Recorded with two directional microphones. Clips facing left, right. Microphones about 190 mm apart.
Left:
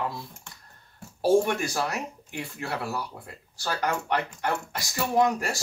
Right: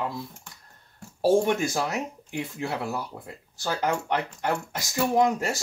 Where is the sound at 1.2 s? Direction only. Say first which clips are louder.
Right 1 dB; 20° right (ahead or behind).